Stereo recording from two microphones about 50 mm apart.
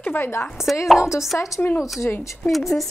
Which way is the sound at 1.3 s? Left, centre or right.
Left.